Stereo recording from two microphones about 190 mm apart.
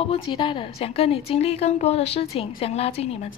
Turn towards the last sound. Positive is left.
turn(degrees=30)  # may be behind; listen again after turning